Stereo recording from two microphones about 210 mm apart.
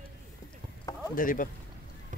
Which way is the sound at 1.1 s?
40° left (ahead or behind).